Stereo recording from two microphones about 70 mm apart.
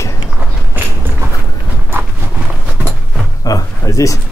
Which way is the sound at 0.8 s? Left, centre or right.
Right.